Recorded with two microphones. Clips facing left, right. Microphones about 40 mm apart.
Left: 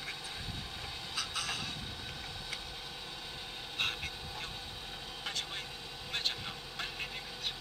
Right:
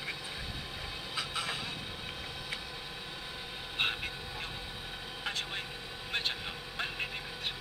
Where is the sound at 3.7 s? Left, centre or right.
Right.